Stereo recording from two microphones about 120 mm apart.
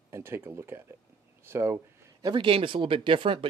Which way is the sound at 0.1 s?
20° right (ahead or behind).